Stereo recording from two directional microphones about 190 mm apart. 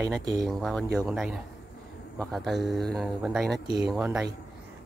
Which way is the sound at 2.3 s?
Centre (ahead or behind).